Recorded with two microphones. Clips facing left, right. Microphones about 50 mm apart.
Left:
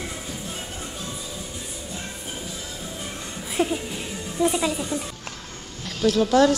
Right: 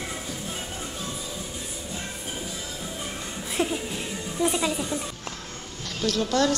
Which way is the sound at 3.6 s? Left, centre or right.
Centre.